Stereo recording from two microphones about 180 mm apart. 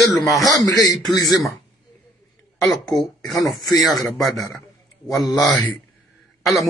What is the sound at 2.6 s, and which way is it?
Speech, centre (ahead or behind).